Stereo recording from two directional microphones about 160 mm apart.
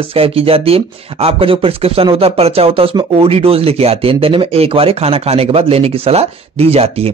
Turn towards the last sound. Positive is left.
turn(degrees=-40)  # may be behind; listen again after turning